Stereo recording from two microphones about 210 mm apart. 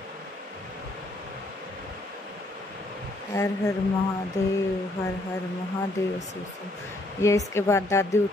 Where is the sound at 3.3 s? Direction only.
15° left (ahead or behind).